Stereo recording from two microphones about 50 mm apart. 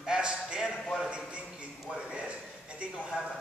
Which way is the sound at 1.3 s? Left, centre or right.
Right.